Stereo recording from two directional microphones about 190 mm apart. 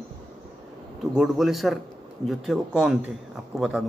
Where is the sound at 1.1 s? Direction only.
Centre (ahead or behind).